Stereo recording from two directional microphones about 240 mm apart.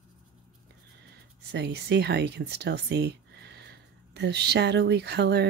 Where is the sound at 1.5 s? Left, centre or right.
Right.